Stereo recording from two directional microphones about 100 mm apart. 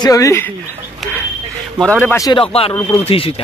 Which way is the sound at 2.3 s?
70° left (ahead or behind).